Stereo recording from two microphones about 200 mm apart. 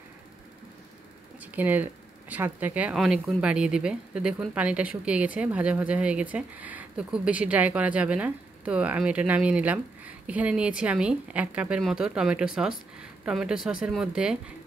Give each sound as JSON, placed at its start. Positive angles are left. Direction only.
{"t": 1.4, "sound": "speech", "side_deg": -10}